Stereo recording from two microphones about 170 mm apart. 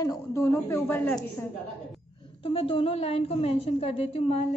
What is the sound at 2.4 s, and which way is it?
A woman's voice, 35° left (ahead or behind).